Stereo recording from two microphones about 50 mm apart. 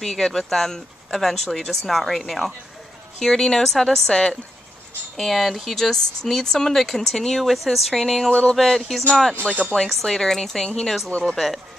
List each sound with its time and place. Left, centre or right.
0.0 s speech: centre
8.3 s speech: centre
8.5 s speech: centre
9.3 s speech: left
9.8 s speech: centre
11.1 s speech: left
11.3 s speech: centre